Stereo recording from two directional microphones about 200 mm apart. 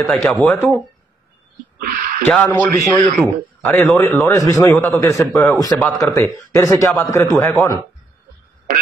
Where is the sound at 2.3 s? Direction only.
5° left (ahead or behind).